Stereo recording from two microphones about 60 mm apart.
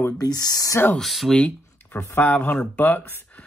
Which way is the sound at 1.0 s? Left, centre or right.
Centre.